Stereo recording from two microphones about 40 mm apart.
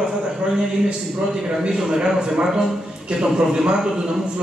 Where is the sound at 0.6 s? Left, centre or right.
Centre.